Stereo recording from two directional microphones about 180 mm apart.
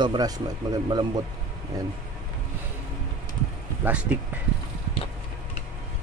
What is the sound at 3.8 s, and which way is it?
Speech, 5° right (ahead or behind).